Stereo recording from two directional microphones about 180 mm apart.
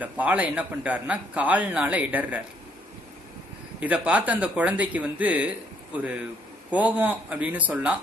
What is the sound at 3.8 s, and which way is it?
A man's voice, 10° right (ahead or behind).